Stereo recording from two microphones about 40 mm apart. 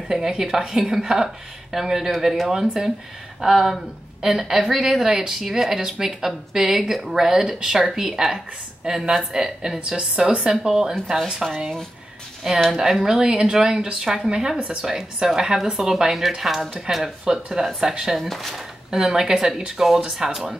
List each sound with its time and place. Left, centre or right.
0.1 s a woman's voice: centre
12.7 s a woman's voice: centre
16.9 s a woman's voice: centre
18.1 s speech: centre
18.9 s a woman's voice: centre